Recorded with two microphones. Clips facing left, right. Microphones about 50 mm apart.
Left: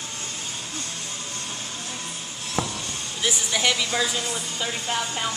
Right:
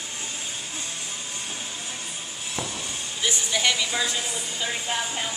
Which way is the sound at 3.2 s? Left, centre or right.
Centre.